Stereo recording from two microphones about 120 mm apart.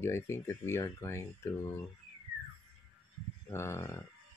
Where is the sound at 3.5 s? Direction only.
20° left (ahead or behind).